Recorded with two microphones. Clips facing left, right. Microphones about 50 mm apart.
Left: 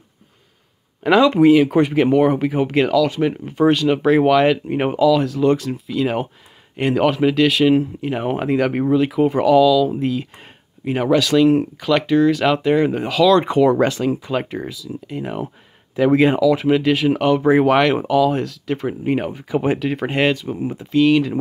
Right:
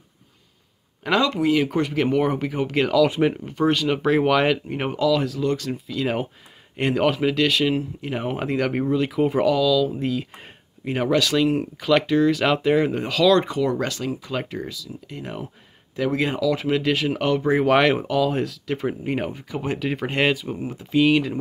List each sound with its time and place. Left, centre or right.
1.0 s speech: centre
4.6 s speech: centre
13.5 s speech: left; by 15.4 s centre
16.1 s speech: left
16.3 s speech: centre
19.5 s speech: centre
19.8 s speech: centre